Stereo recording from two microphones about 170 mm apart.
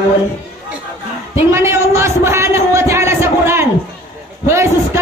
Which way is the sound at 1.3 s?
15° right (ahead or behind).